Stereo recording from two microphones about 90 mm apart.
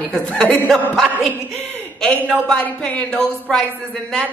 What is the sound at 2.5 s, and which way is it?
A man's voice, 15° left (ahead or behind).